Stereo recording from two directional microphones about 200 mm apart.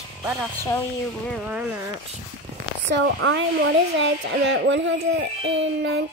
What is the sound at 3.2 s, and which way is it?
Speech, 70° right (ahead or behind).